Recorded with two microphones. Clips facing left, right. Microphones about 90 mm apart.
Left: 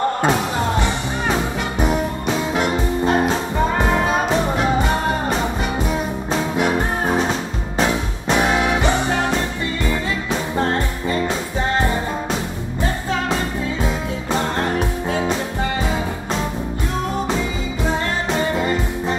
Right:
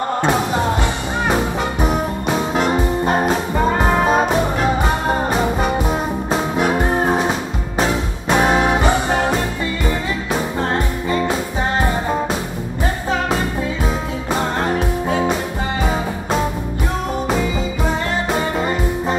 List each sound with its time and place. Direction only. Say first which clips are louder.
1.9 s music: right 1 dB; 40° right (ahead or behind)
8.3 s music: right 2 dB; 40° right (ahead or behind)